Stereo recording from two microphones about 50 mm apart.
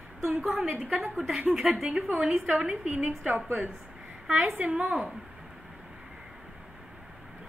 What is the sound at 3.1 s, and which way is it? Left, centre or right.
Speech, centre.